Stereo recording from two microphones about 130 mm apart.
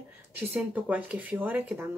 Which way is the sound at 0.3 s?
15° right (ahead or behind).